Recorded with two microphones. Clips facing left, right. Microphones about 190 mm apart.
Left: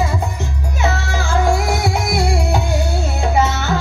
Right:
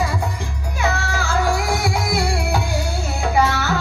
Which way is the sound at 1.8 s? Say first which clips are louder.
Left 2 dB; 20° left (ahead or behind).